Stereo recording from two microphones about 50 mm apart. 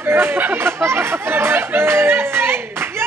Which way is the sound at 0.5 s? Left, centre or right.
Right.